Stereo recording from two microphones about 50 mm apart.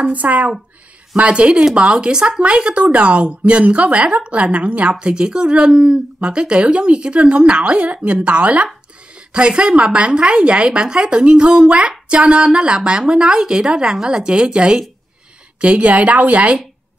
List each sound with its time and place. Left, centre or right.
0.1 s speech: right